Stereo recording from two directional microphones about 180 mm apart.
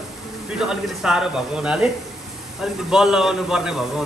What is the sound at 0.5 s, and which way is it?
A man's voice, 5° right (ahead or behind).